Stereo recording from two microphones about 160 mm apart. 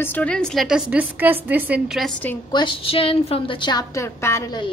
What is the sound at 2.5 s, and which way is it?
A child's voice, 30° left (ahead or behind).